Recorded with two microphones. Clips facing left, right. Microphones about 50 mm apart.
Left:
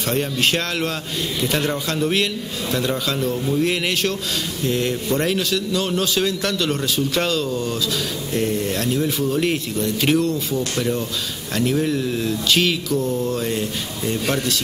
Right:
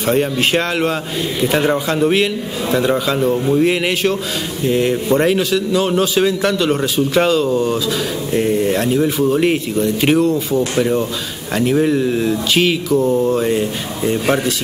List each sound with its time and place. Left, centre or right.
0.0 s a man's voice: centre